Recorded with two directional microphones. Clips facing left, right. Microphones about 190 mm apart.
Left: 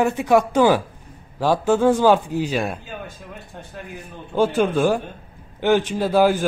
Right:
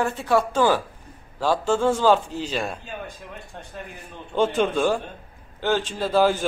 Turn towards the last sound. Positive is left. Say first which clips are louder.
# left 3 dB
turn(degrees=10)  # may be behind; listen again after turning